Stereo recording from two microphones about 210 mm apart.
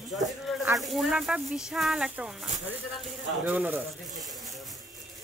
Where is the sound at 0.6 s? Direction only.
Centre (ahead or behind).